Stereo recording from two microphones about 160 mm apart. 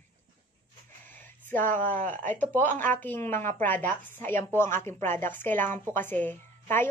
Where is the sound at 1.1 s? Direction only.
10° left (ahead or behind).